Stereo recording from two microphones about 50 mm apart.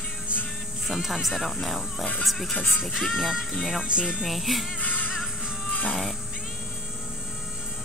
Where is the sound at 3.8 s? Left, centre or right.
Centre.